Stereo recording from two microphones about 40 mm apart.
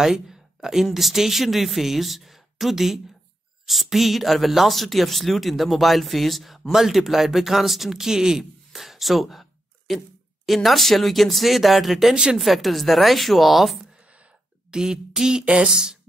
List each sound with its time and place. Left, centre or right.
0.0 s speech: centre
12.1 s speech: centre
12.4 s speech: centre
14.7 s a sound: centre
15.7 s speech: centre